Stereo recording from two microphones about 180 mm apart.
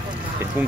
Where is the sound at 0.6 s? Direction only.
10° right (ahead or behind).